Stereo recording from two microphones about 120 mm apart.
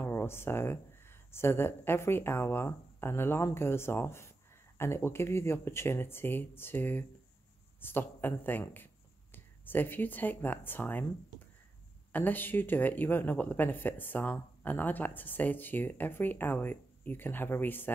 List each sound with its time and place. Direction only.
0.0 s speech: 20° left (ahead or behind)
12.1 s speech: 15° left (ahead or behind)